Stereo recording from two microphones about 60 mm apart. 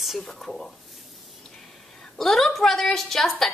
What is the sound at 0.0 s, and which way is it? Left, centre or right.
Female singing, centre.